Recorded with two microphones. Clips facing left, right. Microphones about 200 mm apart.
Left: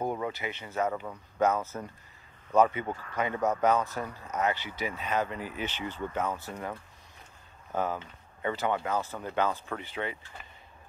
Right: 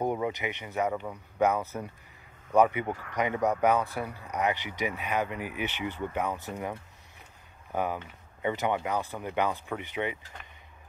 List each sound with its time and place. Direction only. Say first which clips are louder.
0.0 s speech: right 3 dB; 15° right (ahead or behind)